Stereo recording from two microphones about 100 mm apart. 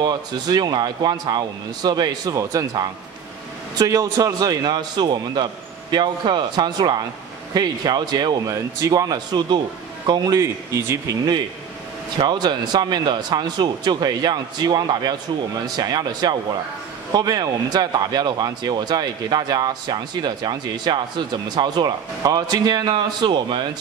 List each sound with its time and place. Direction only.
0.0 s speech: 45° right (ahead or behind); by 11.1 s 30° right (ahead or behind)
12.2 s speech: 45° right (ahead or behind)